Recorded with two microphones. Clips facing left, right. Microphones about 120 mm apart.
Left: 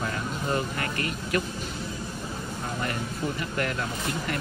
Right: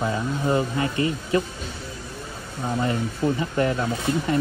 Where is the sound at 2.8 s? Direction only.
20° right (ahead or behind).